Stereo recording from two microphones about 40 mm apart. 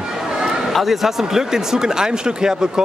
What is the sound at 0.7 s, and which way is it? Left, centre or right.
Speech, centre.